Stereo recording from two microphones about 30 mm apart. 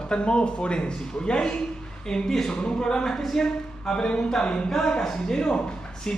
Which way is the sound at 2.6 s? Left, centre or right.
Left.